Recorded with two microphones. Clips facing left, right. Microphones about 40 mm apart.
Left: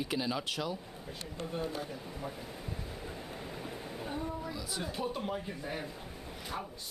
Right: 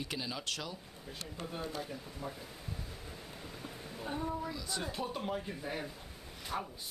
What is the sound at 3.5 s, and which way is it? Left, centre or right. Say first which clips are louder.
Dog: left 4 dB; centre.